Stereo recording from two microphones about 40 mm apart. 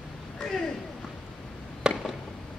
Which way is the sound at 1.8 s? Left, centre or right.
Centre.